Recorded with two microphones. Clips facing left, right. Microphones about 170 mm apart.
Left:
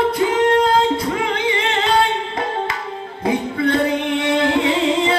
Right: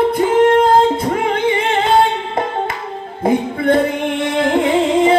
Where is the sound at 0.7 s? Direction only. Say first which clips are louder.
Right 4 dB; 50° right (ahead or behind).